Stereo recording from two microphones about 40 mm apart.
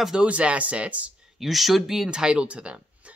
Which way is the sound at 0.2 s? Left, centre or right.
Right.